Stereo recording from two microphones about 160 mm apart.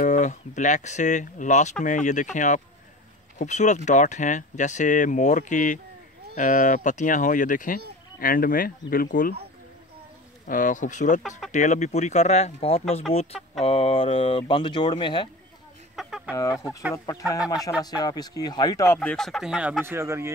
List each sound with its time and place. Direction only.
0.0 s speech: 50° left (ahead or behind)
10.4 s speech: 55° left (ahead or behind); by 15.2 s 30° left (ahead or behind)
16.0 s chicken: 5° right (ahead or behind)
16.5 s speech: 5° right (ahead or behind)
16.9 s speech: 20° left (ahead or behind)
18.9 s speech: 5° left (ahead or behind)
19.8 s speech: 15° right (ahead or behind)